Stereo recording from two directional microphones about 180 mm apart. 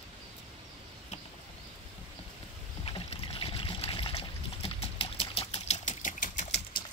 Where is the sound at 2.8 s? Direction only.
30° left (ahead or behind).